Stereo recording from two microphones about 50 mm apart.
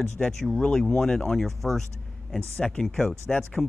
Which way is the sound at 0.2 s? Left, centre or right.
Centre.